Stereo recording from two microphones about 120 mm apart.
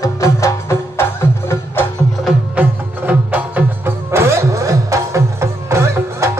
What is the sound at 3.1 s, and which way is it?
Music, 10° right (ahead or behind).